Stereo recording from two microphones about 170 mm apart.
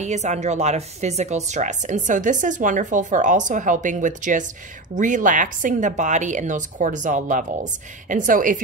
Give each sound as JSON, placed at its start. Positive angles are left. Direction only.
{"t": 0.0, "sound": "speech", "side_deg": -40}